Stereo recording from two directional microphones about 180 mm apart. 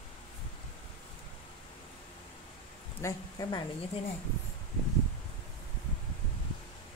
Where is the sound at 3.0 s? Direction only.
20° left (ahead or behind).